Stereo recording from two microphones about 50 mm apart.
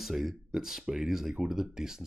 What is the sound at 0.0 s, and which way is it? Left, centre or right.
Speech, centre.